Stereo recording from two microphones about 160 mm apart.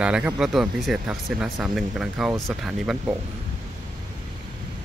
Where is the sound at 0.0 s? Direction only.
5° right (ahead or behind).